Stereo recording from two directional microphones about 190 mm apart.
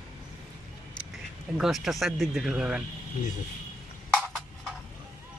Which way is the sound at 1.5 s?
Centre (ahead or behind).